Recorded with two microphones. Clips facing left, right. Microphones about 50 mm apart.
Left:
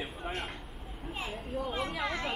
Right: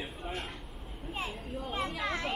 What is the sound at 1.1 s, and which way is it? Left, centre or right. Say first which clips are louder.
Speech: left 1 dB; centre.